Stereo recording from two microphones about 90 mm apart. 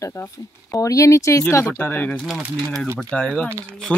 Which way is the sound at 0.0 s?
30° left (ahead or behind).